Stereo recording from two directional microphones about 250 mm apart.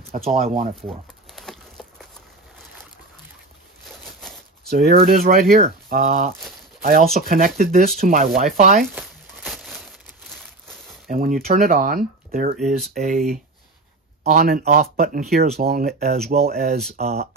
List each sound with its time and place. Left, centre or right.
0.1 s speech: right
0.8 s crumpling: centre
3.8 s a sound: centre
4.6 s speech: right
8.9 s crumpling: centre
11.1 s speech: right
14.2 s speech: right